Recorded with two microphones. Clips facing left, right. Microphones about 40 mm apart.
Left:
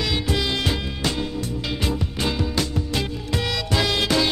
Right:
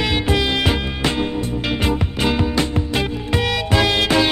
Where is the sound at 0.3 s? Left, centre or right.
Right.